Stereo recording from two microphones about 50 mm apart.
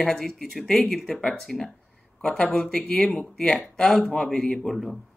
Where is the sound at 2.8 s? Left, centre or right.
Left.